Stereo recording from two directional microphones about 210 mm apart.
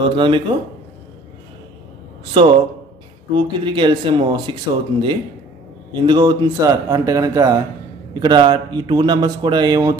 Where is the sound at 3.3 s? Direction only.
25° right (ahead or behind).